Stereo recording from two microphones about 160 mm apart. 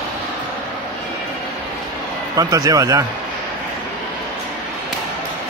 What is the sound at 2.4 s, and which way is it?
Speech, 20° right (ahead or behind).